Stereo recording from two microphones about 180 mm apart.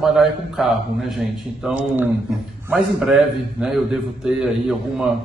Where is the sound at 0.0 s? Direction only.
Centre (ahead or behind).